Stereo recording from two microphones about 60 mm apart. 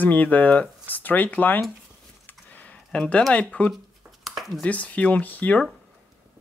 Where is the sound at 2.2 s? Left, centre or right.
Left.